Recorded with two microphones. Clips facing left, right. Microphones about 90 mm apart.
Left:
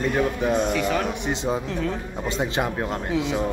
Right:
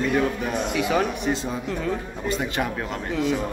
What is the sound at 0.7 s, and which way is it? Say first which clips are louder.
Speech: right 1 dB; 5° right (ahead or behind).